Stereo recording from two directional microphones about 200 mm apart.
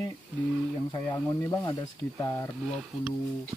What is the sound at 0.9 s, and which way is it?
Speech, 15° left (ahead or behind).